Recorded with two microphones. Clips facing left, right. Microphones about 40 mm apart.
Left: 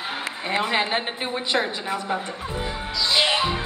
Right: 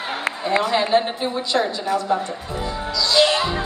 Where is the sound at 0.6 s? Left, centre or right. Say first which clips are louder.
Right 4 dB; left.